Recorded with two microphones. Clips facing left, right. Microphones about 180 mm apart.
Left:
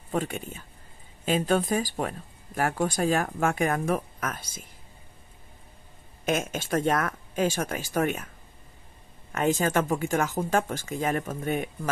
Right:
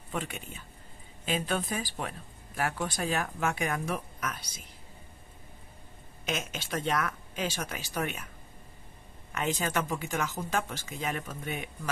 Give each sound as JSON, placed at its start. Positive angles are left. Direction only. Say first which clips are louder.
{"t": 0.1, "sound": "speech", "louder": "left 7 dB", "side_deg": 45}
{"t": 6.2, "sound": "speech", "louder": "left 7 dB", "side_deg": 50}
{"t": 9.3, "sound": "speech", "louder": "left 7 dB", "side_deg": 45}